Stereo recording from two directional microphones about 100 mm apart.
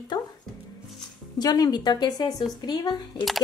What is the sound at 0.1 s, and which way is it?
Speech, 45° left (ahead or behind).